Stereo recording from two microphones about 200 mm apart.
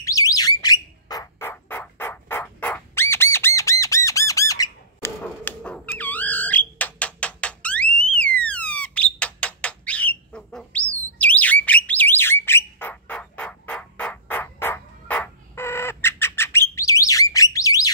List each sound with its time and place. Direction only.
0.0 s bird: 15° left (ahead or behind)